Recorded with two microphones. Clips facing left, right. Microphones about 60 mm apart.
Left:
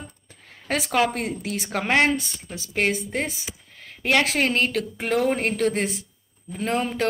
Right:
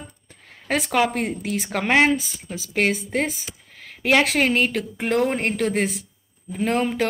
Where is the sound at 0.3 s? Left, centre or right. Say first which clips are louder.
Right 2 dB; centre.